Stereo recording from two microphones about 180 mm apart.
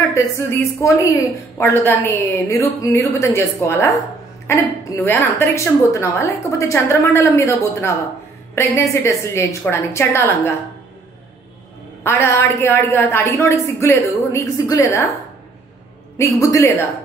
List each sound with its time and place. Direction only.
0.0 s a woman's voice: 15° left (ahead or behind)
12.0 s a woman's voice: 15° left (ahead or behind)
16.2 s a woman's voice: 15° left (ahead or behind)